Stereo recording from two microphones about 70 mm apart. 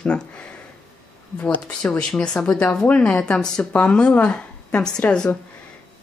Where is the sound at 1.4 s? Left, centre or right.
Centre.